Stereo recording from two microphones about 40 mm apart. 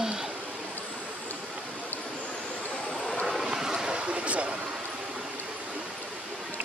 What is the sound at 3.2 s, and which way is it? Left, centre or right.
Vehicle, centre.